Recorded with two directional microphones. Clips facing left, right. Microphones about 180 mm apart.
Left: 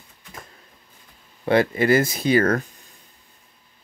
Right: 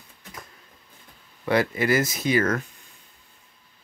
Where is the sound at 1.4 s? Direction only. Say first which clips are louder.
Left 4 dB; 30° left (ahead or behind).